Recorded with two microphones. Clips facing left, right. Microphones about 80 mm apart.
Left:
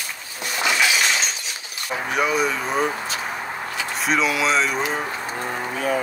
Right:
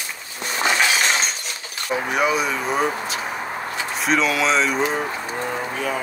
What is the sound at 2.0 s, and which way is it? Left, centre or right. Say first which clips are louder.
Speech: even; centre.